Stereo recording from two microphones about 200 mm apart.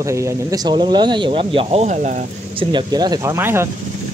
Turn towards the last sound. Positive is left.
turn(degrees=-10)  # may be behind; listen again after turning